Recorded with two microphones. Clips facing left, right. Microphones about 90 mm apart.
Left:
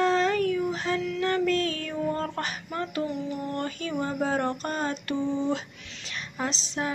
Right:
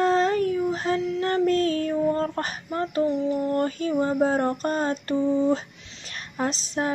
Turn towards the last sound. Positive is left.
turn(degrees=-45)  # may be behind; listen again after turning